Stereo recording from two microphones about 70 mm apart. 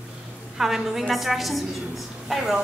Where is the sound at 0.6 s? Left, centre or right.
Centre.